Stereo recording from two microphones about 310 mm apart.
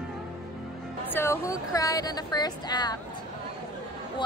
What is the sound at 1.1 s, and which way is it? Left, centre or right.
A woman's voice, centre.